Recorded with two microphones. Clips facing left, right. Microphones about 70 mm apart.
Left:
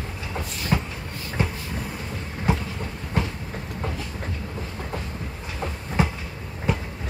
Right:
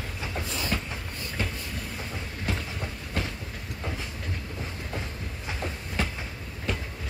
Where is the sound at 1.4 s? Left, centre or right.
Centre.